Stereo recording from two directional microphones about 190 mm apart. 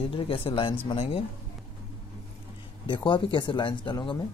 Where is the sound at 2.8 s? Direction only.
25° left (ahead or behind).